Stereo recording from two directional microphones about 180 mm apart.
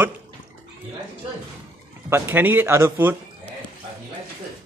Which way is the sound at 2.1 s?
10° right (ahead or behind).